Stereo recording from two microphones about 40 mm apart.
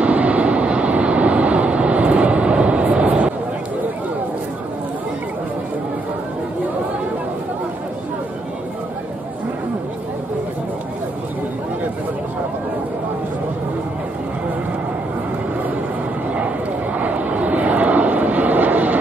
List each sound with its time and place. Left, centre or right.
0.0 s vehicle: right
17.0 s vehicle: right